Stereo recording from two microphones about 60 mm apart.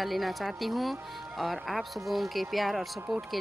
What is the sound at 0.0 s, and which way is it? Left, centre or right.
Speech, centre.